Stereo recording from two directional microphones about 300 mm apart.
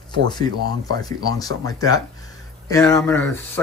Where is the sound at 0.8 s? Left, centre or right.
Centre.